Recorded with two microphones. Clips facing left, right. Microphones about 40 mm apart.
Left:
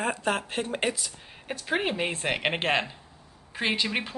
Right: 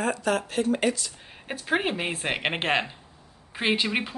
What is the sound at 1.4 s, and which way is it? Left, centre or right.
Speech, centre.